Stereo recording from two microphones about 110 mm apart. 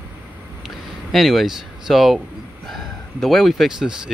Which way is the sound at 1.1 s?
Centre (ahead or behind).